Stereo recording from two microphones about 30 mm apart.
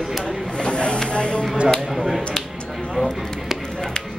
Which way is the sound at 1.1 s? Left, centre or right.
Left.